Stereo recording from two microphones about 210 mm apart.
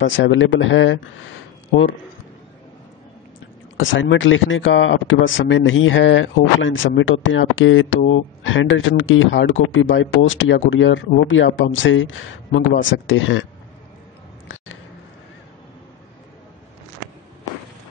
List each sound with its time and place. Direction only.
0.0 s speech: 60° left (ahead or behind)
3.7 s speech: 65° left (ahead or behind)